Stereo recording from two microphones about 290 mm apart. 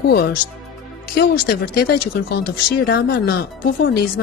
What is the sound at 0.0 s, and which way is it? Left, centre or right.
Speech, left.